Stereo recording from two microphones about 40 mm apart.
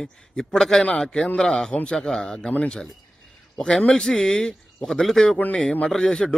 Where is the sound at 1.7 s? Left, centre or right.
Left.